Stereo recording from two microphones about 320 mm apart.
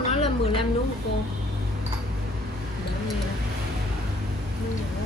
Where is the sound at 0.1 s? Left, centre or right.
Centre.